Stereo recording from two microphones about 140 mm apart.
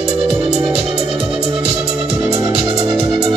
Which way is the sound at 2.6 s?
35° right (ahead or behind).